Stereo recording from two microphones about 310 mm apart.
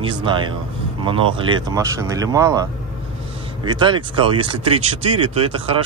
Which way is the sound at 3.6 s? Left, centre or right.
Centre.